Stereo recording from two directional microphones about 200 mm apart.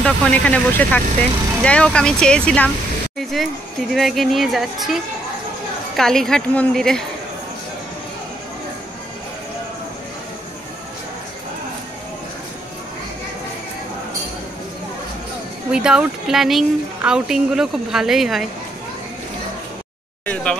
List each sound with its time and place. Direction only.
0.0 s speech: 5° left (ahead or behind)
15.7 s speech: 5° right (ahead or behind)